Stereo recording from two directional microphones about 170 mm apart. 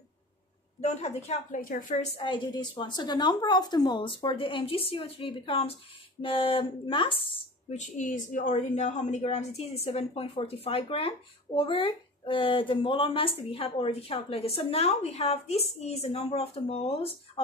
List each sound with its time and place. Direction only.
0.7 s a woman's voice: 40° left (ahead or behind)
2.1 s a woman's voice: 30° left (ahead or behind)
7.8 s a woman's voice: 45° left (ahead or behind)